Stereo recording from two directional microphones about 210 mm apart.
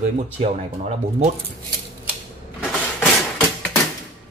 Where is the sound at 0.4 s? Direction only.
30° right (ahead or behind).